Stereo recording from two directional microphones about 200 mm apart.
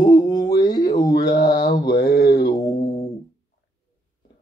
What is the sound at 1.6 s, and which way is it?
Mantra, 50° left (ahead or behind).